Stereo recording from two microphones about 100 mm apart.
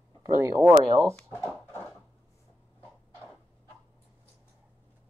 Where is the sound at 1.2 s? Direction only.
25° left (ahead or behind).